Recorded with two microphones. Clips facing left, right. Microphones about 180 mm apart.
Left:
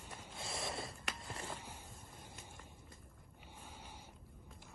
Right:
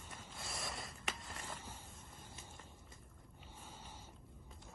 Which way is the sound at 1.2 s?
35° left (ahead or behind).